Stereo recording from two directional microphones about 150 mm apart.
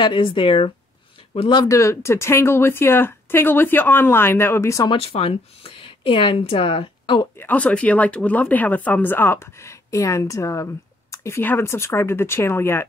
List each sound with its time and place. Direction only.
0.0 s speech: 35° left (ahead or behind)
4.9 s speech: 40° left (ahead or behind)
7.3 s speech: 10° left (ahead or behind)